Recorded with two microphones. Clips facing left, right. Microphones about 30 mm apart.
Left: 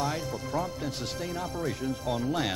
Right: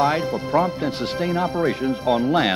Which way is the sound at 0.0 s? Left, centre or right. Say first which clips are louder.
Right 11 dB; right.